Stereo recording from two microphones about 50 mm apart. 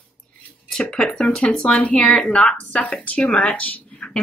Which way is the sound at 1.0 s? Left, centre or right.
Centre.